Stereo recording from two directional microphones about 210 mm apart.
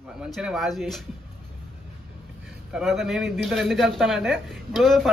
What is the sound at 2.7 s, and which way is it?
Speech, centre (ahead or behind).